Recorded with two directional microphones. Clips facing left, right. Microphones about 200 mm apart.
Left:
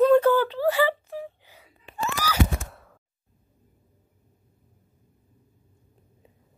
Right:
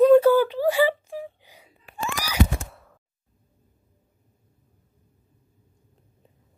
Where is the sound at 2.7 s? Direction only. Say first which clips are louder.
Even; centre (ahead or behind).